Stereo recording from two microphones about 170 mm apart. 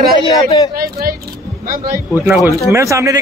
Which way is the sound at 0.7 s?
60° right (ahead or behind).